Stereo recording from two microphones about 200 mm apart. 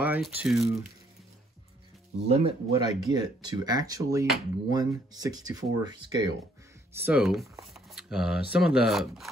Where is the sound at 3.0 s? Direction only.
20° right (ahead or behind).